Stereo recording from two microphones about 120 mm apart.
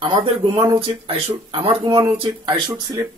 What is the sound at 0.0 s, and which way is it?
Speech, 45° right (ahead or behind).